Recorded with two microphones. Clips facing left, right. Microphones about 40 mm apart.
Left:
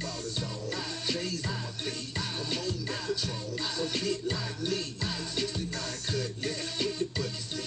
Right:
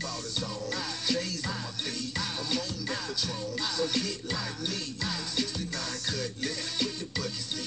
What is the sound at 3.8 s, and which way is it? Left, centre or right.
Music, left.